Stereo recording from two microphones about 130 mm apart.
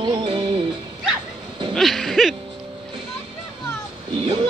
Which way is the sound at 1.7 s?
Centre (ahead or behind).